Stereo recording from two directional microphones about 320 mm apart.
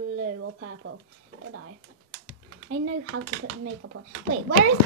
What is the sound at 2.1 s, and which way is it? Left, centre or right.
Speech, right.